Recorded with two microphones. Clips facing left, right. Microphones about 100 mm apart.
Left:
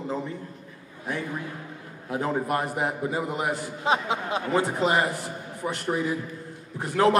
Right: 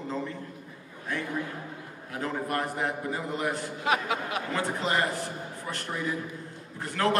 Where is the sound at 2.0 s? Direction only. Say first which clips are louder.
Left 5 dB; 15° left (ahead or behind).